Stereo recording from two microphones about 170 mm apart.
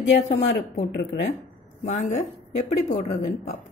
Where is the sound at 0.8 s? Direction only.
90° left.